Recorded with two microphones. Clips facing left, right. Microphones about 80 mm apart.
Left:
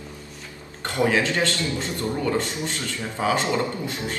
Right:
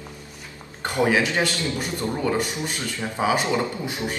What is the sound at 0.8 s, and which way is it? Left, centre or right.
A man's voice, centre.